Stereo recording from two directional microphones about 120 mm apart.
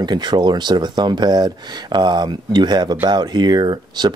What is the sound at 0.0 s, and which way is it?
Speech, 35° right (ahead or behind).